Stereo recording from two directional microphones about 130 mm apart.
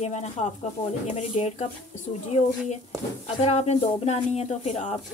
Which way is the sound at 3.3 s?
55° left (ahead or behind).